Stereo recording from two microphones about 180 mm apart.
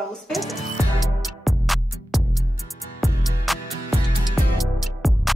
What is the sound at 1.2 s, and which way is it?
Music, centre (ahead or behind).